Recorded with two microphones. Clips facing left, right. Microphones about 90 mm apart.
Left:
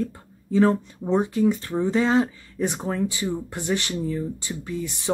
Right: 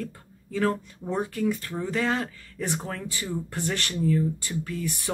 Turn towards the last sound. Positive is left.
turn(degrees=20)  # may be behind; listen again after turning